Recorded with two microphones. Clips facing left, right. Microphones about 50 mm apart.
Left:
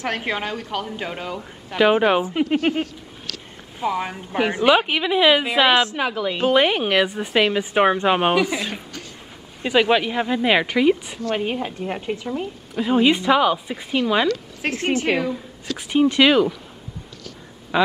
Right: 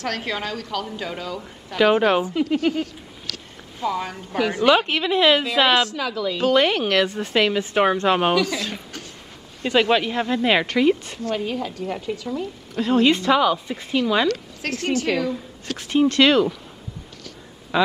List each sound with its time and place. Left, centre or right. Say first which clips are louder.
0.0 s a woman's voice: left 2 dB; left
2.2 s speech: left 1 dB; left
3.8 s a woman's voice: left 1 dB; left
4.6 s a woman's voice: even; centre
5.9 s a woman's voice: left 2 dB; left
9.6 s a woman's voice: left 1 dB; centre
11.2 s a woman's voice: left 2 dB; left
12.7 s a woman's voice: even; centre
14.6 s a woman's voice: left 3 dB; left
15.9 s a woman's voice: left 1 dB; centre
17.7 s a woman's voice: left 1 dB; centre